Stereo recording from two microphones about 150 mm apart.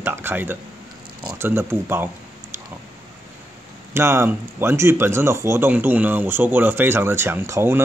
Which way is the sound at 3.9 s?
20° right (ahead or behind).